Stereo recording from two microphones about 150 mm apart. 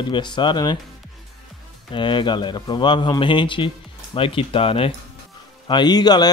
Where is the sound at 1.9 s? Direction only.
30° left (ahead or behind).